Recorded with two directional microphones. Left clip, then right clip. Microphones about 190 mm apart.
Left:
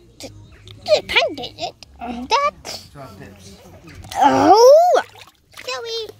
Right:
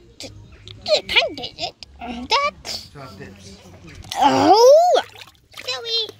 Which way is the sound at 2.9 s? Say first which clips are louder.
Even; 40° left (ahead or behind).